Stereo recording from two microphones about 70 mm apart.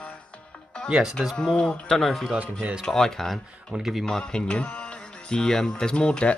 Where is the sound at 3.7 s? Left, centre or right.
Centre.